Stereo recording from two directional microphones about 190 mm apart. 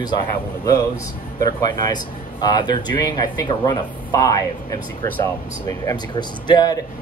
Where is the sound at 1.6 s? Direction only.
20° left (ahead or behind).